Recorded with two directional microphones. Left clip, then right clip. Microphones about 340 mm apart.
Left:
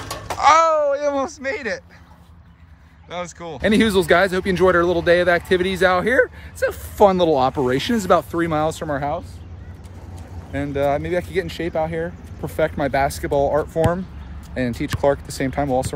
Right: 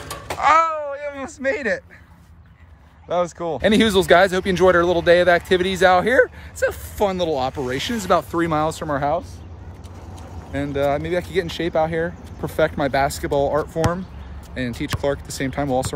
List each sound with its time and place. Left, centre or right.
0.3 s a sound: centre
3.1 s speech: centre
7.0 s speech: centre
10.5 s speech: centre